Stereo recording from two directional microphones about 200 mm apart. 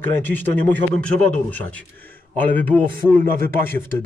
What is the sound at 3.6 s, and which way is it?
Speech, 10° left (ahead or behind).